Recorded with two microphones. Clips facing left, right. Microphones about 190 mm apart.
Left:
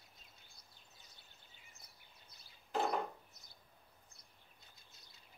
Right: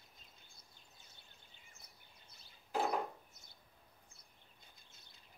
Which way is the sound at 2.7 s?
Centre (ahead or behind).